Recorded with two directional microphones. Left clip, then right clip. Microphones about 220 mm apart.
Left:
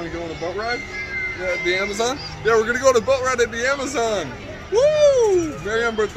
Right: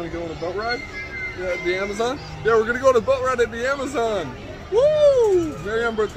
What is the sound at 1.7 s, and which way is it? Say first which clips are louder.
A man's voice: left 2 dB; 10° left (ahead or behind).